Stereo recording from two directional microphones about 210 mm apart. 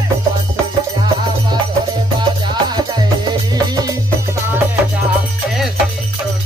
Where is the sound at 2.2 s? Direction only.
20° right (ahead or behind).